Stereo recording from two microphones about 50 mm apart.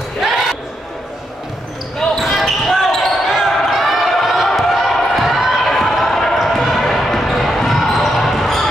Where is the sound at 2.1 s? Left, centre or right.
Centre.